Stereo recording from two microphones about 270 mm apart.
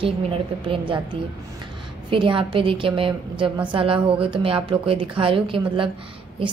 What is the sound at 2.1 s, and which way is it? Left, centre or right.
A woman's voice, centre.